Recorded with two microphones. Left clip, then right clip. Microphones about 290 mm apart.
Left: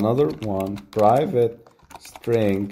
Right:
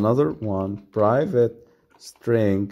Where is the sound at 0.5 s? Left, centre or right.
Right.